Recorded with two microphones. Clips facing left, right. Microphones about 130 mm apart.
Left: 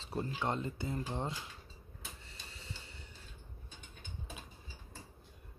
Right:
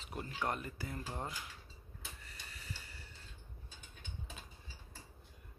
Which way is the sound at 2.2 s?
25° left (ahead or behind).